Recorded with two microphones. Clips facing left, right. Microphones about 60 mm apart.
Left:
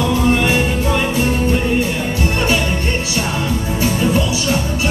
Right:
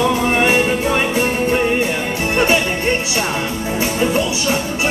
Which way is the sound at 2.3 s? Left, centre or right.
Right.